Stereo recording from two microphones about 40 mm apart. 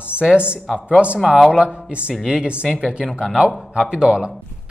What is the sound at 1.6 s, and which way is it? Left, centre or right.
A man's voice, right.